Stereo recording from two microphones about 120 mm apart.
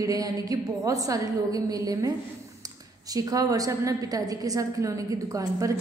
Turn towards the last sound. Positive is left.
turn(degrees=-30)  # may be behind; listen again after turning